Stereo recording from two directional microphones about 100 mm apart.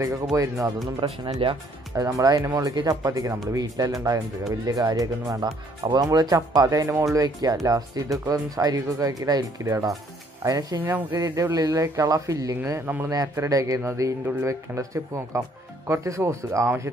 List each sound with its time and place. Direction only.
0.0 s speech: 30° right (ahead or behind)
1.0 s speech: 60° right (ahead or behind)
2.0 s speech: 35° right (ahead or behind)
10.8 s speech: 20° right (ahead or behind)
11.1 s speech: 35° right (ahead or behind)